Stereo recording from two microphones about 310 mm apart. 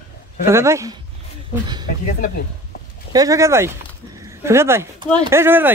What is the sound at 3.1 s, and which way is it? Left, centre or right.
Speech, centre.